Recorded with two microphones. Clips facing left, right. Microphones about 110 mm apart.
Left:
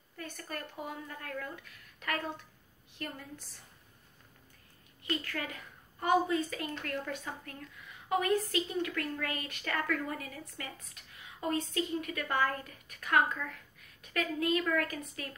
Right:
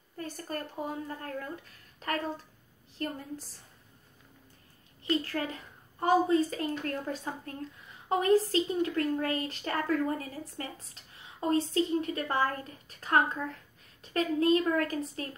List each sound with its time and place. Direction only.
0.2 s a woman's voice: 35° right (ahead or behind)
5.1 s a woman's voice: 30° right (ahead or behind)